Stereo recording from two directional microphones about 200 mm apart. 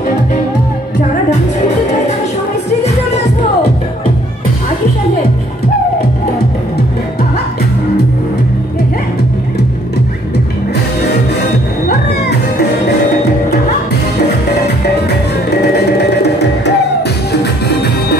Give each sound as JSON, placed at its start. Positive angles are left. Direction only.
{"t": 15.5, "sound": "music", "side_deg": 55}